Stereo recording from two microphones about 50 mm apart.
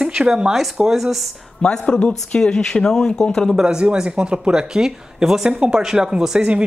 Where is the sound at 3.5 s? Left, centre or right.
Centre.